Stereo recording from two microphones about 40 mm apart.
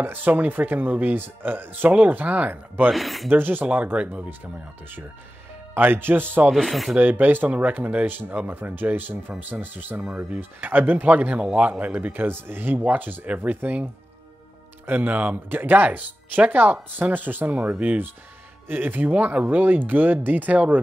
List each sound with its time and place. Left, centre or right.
0.0 s speech: right
1.9 s speech: right
2.5 s speech: right
2.9 s speech: centre
3.3 s speech: right
3.6 s speech: right
5.8 s speech: right
6.5 s speech: centre
7.0 s speech: right
12.3 s speech: right
14.9 s speech: right
15.5 s speech: right
18.7 s speech: right
19.1 s speech: right